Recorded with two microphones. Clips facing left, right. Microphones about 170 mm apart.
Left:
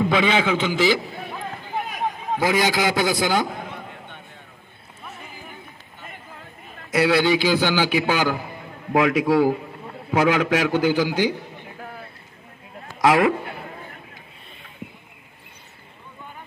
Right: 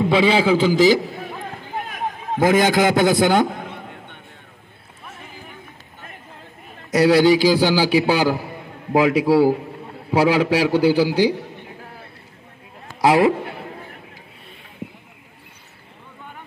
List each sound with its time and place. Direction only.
0.1 s a man's voice: 30° right (ahead or behind)
2.4 s a man's voice: 50° right (ahead or behind)
6.9 s a man's voice: 40° right (ahead or behind)
13.0 s a man's voice: 30° right (ahead or behind)